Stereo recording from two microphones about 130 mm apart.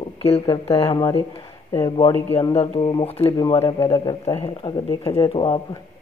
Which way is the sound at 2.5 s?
45° left (ahead or behind).